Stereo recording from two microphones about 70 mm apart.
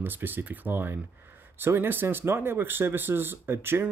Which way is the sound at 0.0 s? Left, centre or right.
Right.